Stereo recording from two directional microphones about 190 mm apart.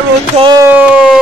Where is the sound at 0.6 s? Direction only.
5° right (ahead or behind).